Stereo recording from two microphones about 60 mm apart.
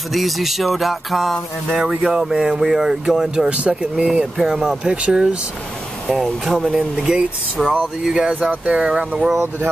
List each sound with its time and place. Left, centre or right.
0.1 s music: centre
1.8 s speech: centre
6.0 s speech: centre
6.4 s speech: centre
8.4 s speech: right